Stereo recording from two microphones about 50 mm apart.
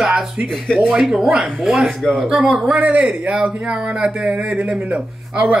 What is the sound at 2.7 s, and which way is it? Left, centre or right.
Speech, right.